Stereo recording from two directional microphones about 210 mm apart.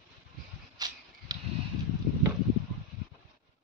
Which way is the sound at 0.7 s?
20° right (ahead or behind).